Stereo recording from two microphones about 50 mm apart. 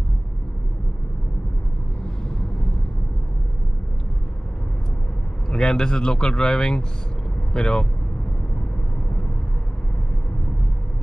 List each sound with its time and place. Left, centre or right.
5.5 s speech: centre